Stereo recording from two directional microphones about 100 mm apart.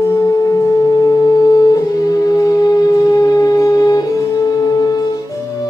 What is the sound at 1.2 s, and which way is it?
Music, 40° left (ahead or behind).